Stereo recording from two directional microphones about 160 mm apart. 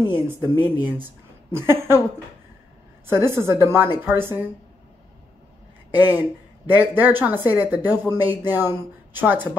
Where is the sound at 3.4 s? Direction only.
15° right (ahead or behind).